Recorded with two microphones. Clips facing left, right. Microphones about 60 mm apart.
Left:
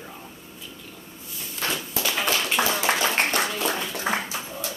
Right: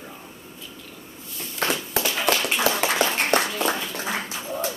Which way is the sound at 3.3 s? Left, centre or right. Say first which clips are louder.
Right 3 dB; right.